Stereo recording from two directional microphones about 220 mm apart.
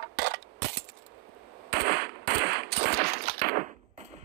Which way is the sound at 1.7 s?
45° right (ahead or behind).